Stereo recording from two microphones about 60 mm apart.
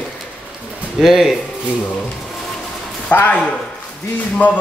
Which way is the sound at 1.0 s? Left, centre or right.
Centre.